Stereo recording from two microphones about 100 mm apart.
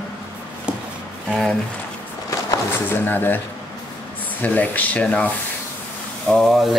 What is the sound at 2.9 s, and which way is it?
Speech, 20° left (ahead or behind).